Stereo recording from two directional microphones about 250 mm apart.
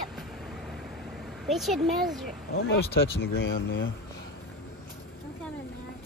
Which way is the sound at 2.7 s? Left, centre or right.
Left.